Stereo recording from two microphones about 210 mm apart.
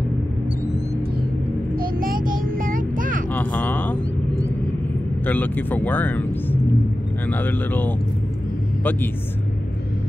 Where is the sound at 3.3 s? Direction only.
10° left (ahead or behind).